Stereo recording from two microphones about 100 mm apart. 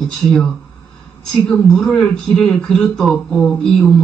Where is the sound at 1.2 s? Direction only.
5° left (ahead or behind).